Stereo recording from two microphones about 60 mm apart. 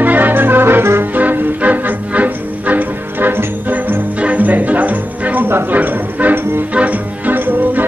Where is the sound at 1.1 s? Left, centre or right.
Right.